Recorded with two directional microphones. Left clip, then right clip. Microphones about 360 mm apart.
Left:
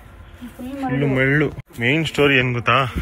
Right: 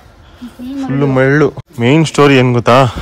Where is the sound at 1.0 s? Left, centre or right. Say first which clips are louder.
Right 8 dB; right.